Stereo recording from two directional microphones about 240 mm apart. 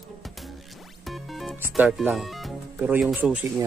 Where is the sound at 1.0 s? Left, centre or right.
Centre.